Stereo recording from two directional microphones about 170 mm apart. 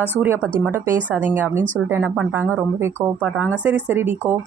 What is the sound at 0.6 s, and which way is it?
A woman's voice, 10° right (ahead or behind).